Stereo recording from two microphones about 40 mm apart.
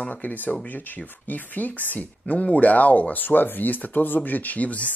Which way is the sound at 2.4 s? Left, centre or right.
Left.